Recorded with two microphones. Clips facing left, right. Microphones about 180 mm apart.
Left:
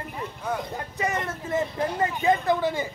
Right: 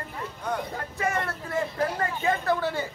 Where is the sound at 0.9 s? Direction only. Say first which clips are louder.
Even; 20° left (ahead or behind).